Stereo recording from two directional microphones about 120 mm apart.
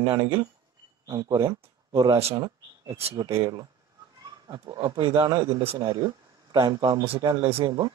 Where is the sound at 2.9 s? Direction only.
55° right (ahead or behind).